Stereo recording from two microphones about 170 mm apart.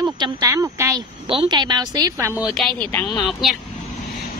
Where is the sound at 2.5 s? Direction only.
Centre (ahead or behind).